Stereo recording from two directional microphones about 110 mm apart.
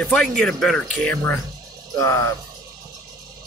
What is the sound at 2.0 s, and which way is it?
Speech, 25° left (ahead or behind).